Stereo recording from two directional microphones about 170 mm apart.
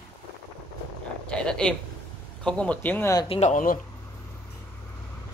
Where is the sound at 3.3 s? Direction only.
40° left (ahead or behind).